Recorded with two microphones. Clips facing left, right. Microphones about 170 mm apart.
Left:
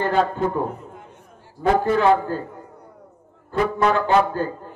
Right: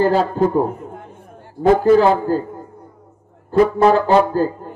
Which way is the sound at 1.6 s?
35° right (ahead or behind).